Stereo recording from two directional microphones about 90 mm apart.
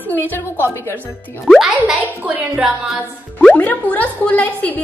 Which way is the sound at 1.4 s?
5° right (ahead or behind).